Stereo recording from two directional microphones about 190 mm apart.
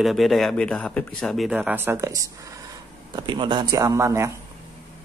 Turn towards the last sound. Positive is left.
turn(degrees=-15)  # may be behind; listen again after turning